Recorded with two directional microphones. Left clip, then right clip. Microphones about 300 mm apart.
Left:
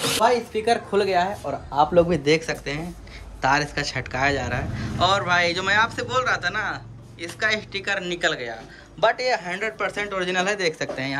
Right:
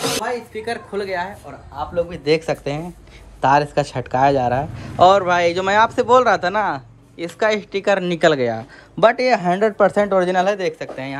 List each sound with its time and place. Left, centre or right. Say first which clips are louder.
0.5 s speech: left 4 dB; centre
1.8 s a man's voice: left 5 dB; centre
2.2 s a man's voice: right 3 dB; centre